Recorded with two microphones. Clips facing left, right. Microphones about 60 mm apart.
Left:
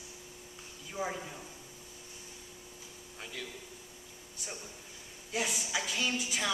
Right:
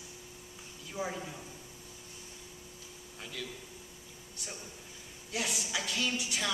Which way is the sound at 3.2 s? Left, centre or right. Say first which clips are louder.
Right 1 dB; centre.